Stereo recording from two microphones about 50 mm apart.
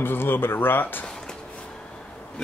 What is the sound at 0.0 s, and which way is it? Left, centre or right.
Speech, left.